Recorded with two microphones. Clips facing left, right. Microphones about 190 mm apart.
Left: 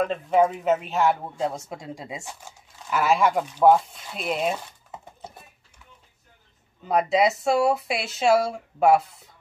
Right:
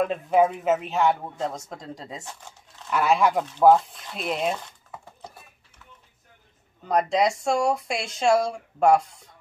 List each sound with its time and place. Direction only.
0.0 s speech: 5° right (ahead or behind)
4.9 s horse: 20° left (ahead or behind)
6.9 s speech: 5° left (ahead or behind)